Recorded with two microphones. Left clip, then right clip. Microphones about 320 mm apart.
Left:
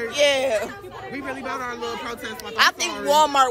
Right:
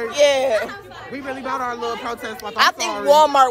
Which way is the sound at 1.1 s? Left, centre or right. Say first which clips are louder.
Right 4 dB; centre.